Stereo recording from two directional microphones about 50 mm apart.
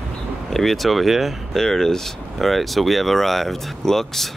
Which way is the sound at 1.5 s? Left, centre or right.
Centre.